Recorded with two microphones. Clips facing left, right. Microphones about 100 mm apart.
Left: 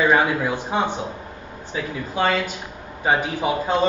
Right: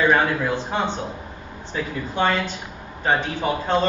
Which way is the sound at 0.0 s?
10° left (ahead or behind).